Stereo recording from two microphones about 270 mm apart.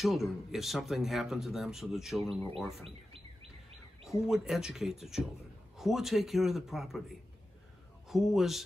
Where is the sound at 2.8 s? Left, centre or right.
Right.